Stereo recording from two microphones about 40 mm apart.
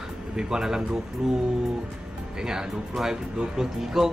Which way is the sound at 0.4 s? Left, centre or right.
Centre.